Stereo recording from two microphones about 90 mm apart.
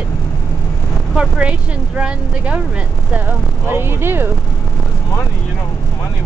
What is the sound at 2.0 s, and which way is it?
Speech, 15° right (ahead or behind).